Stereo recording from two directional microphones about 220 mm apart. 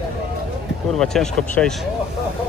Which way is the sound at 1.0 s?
5° left (ahead or behind).